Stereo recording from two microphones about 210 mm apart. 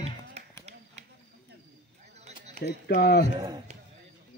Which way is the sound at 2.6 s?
50° left (ahead or behind).